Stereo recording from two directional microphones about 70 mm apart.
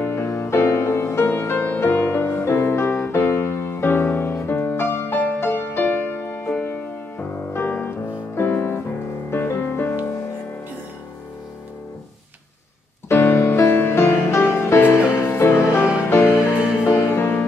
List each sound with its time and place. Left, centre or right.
0.0 s music: left
13.1 s music: left